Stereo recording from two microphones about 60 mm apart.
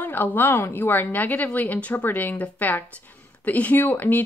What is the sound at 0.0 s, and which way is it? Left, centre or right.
A woman's voice, left.